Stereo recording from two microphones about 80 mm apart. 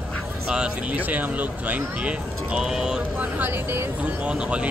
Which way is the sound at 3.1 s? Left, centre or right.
Right.